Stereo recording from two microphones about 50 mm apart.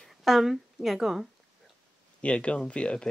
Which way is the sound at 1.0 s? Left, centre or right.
Centre.